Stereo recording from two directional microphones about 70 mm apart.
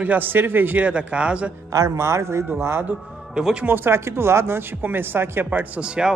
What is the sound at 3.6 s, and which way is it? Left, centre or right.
Speech, right.